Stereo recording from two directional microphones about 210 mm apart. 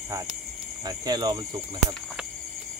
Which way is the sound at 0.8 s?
20° right (ahead or behind).